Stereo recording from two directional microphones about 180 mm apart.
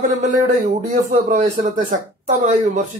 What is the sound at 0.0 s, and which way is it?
A man's voice, 45° right (ahead or behind).